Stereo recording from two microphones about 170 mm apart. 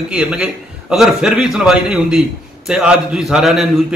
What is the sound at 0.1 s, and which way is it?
A man's voice, 5° right (ahead or behind).